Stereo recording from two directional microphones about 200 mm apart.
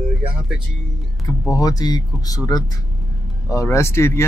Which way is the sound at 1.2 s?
15° left (ahead or behind).